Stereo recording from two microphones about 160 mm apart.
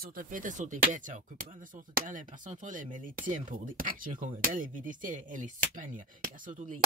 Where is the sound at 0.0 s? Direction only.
60° right (ahead or behind).